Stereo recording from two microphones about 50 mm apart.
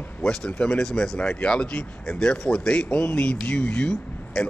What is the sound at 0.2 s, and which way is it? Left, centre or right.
A man's voice, centre.